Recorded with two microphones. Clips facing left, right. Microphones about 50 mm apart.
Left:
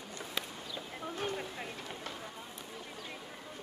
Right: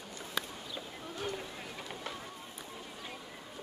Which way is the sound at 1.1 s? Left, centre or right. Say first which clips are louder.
Left 1 dB; left.